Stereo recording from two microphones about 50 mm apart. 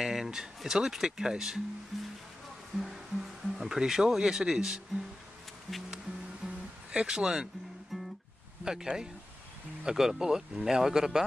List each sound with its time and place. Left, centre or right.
0.0 s speech: centre
6.4 s guitar: centre
7.9 s guitar: centre
8.9 s speech: centre